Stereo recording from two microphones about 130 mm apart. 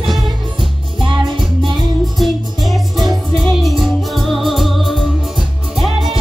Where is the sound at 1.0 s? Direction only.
40° right (ahead or behind).